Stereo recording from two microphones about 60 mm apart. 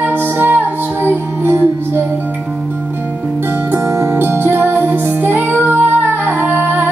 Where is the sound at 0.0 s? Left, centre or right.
Right.